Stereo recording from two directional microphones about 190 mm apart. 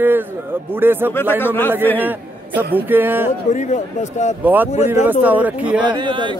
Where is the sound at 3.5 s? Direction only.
40° left (ahead or behind).